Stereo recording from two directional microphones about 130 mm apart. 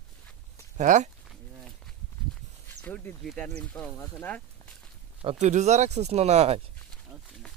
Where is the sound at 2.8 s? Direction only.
10° left (ahead or behind).